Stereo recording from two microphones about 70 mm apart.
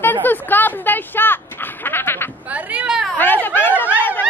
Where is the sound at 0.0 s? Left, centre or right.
Left.